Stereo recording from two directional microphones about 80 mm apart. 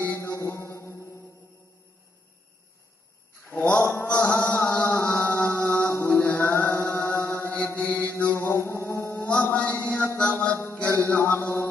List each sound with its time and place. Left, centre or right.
0.1 s mantra: left
3.4 s mantra: centre
4.1 s chant: centre
9.1 s mantra: centre
10.1 s music: centre